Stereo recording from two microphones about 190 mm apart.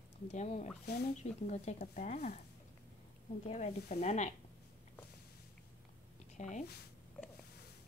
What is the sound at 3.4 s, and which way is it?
Speech, 35° left (ahead or behind).